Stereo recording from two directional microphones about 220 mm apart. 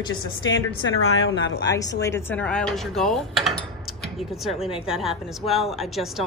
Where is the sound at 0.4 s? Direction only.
60° left (ahead or behind).